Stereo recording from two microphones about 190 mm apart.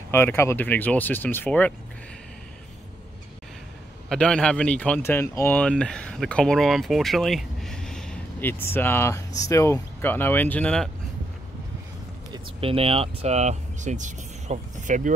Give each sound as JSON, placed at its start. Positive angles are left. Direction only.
{"t": 0.1, "sound": "speech", "side_deg": 15}
{"t": 4.1, "sound": "speech", "side_deg": 5}
{"t": 12.3, "sound": "speech", "side_deg": -30}